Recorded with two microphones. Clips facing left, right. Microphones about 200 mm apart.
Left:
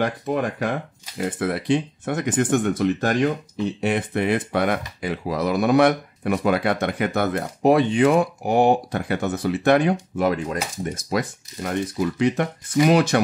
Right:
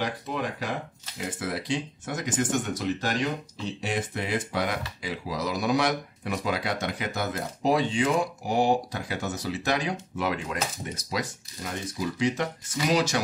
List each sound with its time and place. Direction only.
0.0 s speech: 55° left (ahead or behind)
10.1 s speech: 45° left (ahead or behind)